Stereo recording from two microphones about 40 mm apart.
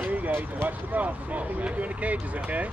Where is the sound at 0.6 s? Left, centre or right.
Right.